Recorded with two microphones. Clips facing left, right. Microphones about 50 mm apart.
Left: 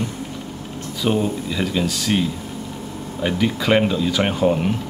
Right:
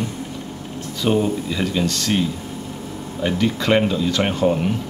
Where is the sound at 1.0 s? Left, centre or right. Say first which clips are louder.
Right 1 dB; centre.